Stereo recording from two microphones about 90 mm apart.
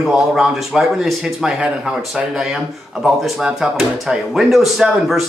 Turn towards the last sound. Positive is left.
turn(degrees=0)  # may be behind; listen again after turning